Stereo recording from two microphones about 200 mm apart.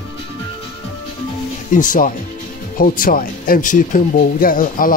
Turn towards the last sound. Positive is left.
turn(degrees=45)  # may be behind; listen again after turning